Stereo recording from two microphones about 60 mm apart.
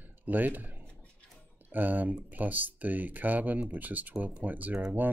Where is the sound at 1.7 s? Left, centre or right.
Right.